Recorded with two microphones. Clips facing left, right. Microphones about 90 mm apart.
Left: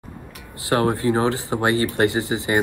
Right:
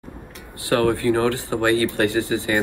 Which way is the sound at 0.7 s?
20° left (ahead or behind).